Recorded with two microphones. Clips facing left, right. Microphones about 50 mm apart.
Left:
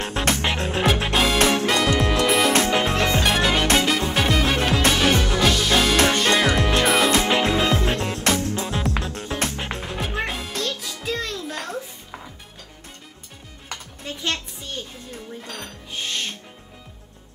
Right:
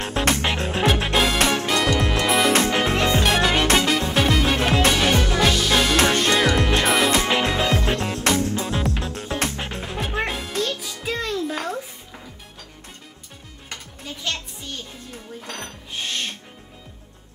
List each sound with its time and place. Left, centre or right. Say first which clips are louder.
0.0 s music: right 1 dB; centre